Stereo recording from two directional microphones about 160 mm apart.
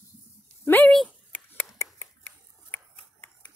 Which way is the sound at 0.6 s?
10° left (ahead or behind).